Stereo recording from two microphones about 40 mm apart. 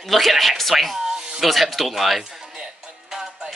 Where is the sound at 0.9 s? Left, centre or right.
Centre.